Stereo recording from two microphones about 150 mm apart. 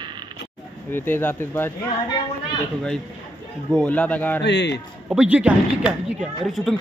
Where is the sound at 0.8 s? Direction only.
15° left (ahead or behind).